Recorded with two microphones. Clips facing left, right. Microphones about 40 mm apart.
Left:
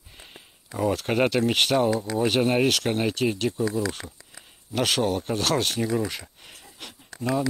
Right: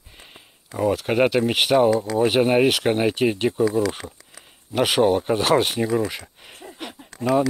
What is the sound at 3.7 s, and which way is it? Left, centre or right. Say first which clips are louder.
Speech: right 5 dB; right.